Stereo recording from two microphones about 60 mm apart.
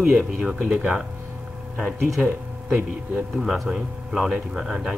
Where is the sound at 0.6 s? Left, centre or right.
Right.